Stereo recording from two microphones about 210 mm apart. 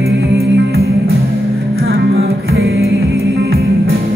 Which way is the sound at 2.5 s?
50° right (ahead or behind).